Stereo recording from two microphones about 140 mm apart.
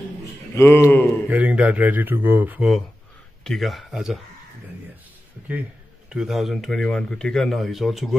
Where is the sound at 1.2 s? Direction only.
10° right (ahead or behind).